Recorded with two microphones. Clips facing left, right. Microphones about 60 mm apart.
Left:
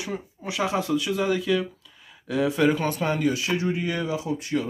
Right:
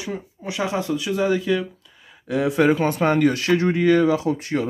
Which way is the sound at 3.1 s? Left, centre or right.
Right.